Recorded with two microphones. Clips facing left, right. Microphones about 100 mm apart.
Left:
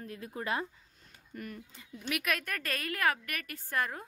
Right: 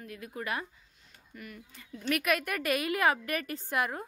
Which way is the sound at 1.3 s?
40° left (ahead or behind).